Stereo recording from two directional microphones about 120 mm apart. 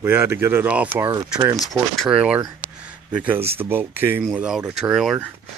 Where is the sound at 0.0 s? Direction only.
20° right (ahead or behind).